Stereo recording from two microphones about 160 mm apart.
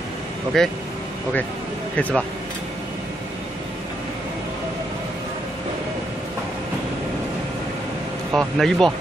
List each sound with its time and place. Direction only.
0.5 s speech: 5° left (ahead or behind)
2.0 s speech: 10° left (ahead or behind)
8.3 s speech: 5° right (ahead or behind)